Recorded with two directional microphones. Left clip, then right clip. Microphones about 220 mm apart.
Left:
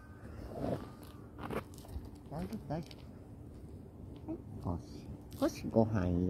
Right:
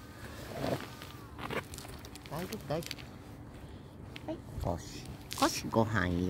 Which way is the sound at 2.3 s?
30° right (ahead or behind).